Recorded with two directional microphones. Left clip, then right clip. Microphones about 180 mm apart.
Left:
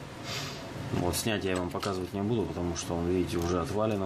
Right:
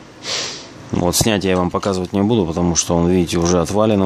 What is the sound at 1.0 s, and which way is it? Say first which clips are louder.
Speech: right 14 dB; 55° right (ahead or behind).